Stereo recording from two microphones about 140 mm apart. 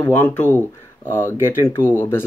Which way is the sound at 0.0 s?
15° left (ahead or behind).